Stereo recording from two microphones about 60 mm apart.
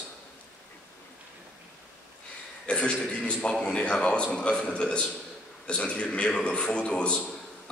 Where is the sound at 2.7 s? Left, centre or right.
Centre.